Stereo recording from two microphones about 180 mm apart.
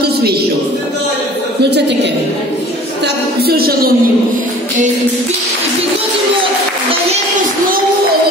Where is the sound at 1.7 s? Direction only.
75° right (ahead or behind).